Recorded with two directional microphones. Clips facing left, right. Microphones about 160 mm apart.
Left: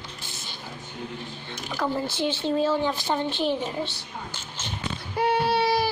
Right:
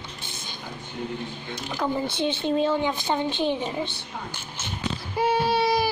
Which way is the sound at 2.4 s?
15° right (ahead or behind).